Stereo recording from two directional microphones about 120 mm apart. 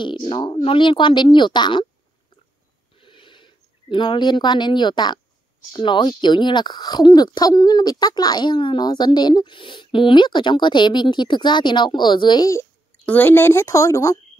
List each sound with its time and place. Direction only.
0.0 s speech: 40° left (ahead or behind)
3.0 s a sound: 45° left (ahead or behind)
5.7 s speech: 40° left (ahead or behind)
13.0 s speech: 15° left (ahead or behind)